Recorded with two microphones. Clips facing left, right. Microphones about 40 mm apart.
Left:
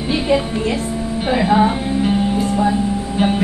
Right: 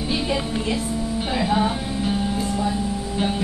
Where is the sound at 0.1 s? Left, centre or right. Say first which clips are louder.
Left 8 dB; left.